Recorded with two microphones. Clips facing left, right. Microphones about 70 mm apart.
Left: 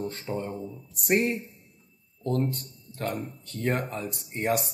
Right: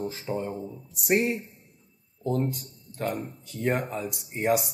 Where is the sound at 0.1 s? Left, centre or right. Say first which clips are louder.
Right 1 dB; centre.